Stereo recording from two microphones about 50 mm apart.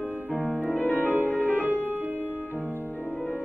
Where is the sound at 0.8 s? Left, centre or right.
Left.